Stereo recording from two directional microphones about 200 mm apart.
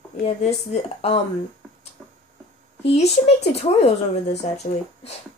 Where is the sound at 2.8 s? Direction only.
30° left (ahead or behind).